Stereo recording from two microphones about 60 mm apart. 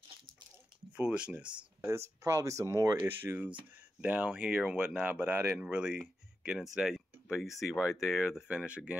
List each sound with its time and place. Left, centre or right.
0.9 s speech: centre
1.9 s speech: right
3.0 s speech: right
4.0 s speech: right
5.5 s speech: centre
6.6 s speech: centre
8.5 s speech: centre